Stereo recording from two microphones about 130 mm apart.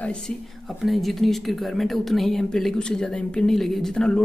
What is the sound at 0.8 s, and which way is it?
Speech, centre (ahead or behind).